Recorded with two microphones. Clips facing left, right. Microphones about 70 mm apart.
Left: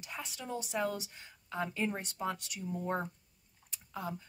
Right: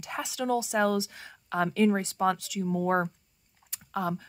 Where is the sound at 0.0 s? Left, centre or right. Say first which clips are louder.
Right 11 dB; right.